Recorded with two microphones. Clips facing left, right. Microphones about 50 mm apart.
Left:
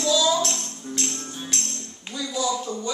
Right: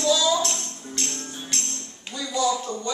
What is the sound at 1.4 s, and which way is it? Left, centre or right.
Tambourine, centre.